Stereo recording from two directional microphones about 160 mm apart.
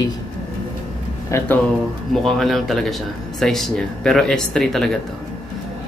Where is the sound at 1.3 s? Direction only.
20° left (ahead or behind).